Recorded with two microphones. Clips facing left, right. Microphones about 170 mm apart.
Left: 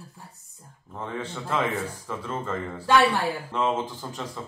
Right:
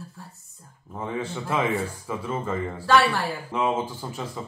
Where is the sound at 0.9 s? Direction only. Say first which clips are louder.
Right 3 dB; 10° right (ahead or behind).